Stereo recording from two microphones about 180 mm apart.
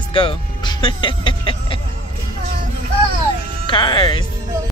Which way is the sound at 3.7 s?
25° left (ahead or behind).